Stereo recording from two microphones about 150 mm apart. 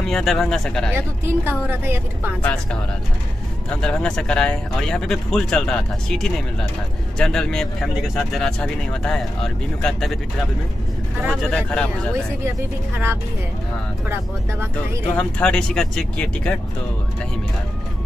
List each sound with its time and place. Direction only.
0.0 s speech: centre (ahead or behind)
0.9 s a woman's voice: 15° right (ahead or behind)
2.4 s speech: 5° left (ahead or behind)
3.8 s speech: 5° left (ahead or behind)
11.5 s speech: 5° left (ahead or behind)
12.9 s a woman's voice: 15° right (ahead or behind)
15.1 s speech: 10° left (ahead or behind)